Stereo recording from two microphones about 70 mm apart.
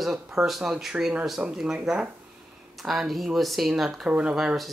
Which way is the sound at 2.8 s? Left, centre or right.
Centre.